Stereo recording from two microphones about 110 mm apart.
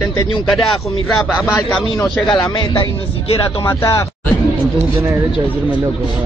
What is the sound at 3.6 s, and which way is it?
Speech, 25° left (ahead or behind).